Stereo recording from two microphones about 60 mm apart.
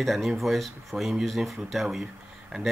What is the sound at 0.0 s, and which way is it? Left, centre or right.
Speech, centre.